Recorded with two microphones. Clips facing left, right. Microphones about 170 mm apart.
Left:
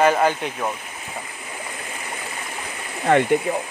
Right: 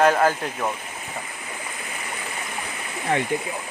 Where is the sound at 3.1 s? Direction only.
65° left (ahead or behind).